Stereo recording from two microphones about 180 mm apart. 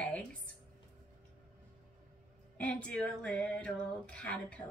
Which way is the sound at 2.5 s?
5° left (ahead or behind).